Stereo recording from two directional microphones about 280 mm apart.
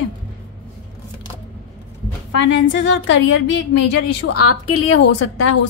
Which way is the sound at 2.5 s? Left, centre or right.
Left.